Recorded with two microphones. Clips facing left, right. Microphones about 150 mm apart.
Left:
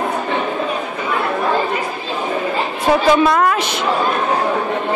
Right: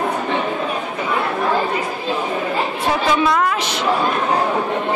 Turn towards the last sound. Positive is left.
turn(degrees=55)  # may be behind; listen again after turning